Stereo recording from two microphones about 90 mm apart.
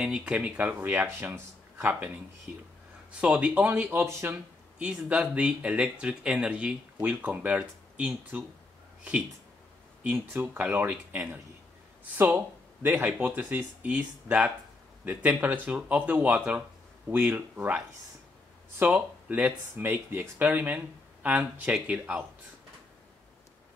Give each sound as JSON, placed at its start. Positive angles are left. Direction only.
{"t": 0.0, "sound": "speech", "side_deg": -10}
{"t": 3.2, "sound": "speech", "side_deg": -10}
{"t": 4.7, "sound": "speech", "side_deg": -10}
{"t": 10.1, "sound": "speech", "side_deg": -25}
{"t": 18.8, "sound": "speech", "side_deg": -15}